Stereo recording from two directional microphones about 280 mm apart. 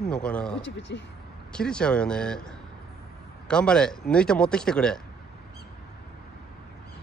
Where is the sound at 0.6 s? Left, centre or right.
Left.